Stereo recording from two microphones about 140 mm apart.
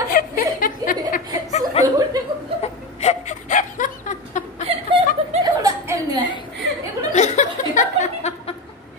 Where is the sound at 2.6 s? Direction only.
50° left (ahead or behind).